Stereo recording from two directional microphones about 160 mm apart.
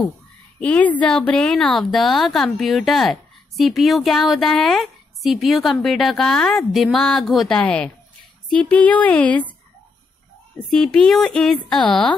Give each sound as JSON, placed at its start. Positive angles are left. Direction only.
{"t": 0.6, "sound": "a woman's voice", "side_deg": 10}
{"t": 10.7, "sound": "a woman's voice", "side_deg": 5}